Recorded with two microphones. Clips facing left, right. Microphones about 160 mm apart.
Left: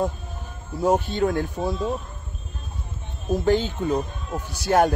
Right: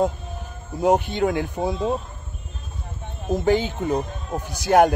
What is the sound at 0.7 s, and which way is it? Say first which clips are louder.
Speech: right 2 dB; 15° right (ahead or behind).